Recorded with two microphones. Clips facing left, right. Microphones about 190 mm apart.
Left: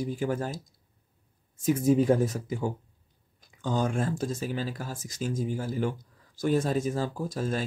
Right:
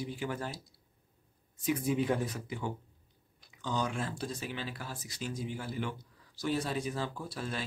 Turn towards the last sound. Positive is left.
turn(degrees=45)  # may be behind; listen again after turning